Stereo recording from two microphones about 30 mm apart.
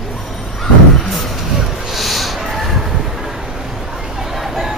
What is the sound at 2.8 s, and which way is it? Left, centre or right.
Train, centre.